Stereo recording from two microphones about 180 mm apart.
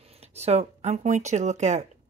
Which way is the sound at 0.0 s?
35° right (ahead or behind).